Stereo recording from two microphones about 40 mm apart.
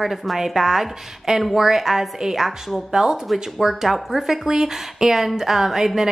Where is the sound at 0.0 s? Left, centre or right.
Centre.